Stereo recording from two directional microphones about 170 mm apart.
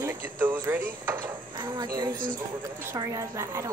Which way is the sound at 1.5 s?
25° right (ahead or behind).